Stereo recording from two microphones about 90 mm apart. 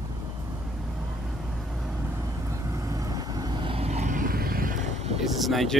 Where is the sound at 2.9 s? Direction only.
40° right (ahead or behind).